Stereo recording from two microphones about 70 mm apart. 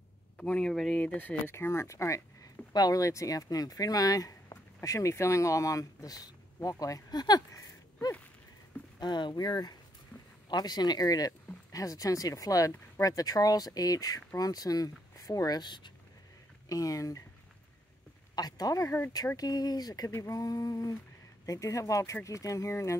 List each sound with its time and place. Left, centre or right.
0.4 s speech: centre
0.9 s speech: left
1.5 s speech: left
2.7 s speech: left
9.0 s speech: left
16.6 s speech: left
18.3 s speech: left
20.2 s speech: left